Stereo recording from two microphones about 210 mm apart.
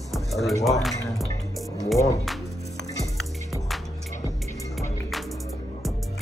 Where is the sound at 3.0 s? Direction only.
Centre (ahead or behind).